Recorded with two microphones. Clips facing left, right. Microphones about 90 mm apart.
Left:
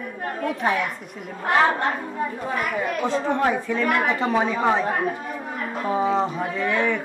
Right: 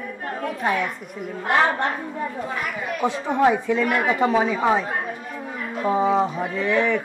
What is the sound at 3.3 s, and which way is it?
Speech, 15° right (ahead or behind).